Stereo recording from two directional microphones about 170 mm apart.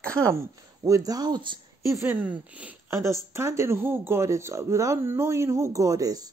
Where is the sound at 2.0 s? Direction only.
10° right (ahead or behind).